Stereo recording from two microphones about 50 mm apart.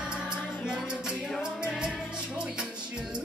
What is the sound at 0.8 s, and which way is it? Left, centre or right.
Music, centre.